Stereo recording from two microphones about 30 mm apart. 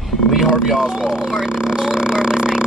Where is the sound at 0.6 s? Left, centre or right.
Centre.